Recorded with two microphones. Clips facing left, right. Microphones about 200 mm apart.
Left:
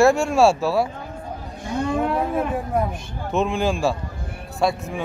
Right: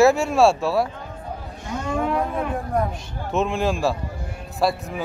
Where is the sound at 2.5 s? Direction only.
5° left (ahead or behind).